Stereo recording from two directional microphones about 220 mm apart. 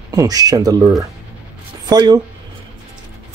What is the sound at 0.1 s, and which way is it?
Speech, 15° right (ahead or behind).